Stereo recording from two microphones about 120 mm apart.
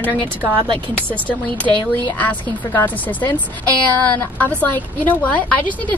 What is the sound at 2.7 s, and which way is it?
A woman's voice, 15° left (ahead or behind).